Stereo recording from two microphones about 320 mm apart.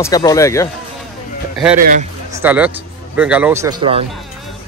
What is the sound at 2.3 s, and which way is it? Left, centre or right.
A man's voice, centre.